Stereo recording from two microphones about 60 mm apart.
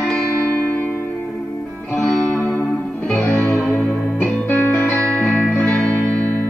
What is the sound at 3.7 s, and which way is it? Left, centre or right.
Music, left.